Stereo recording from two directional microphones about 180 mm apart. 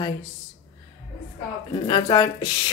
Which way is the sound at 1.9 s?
25° left (ahead or behind).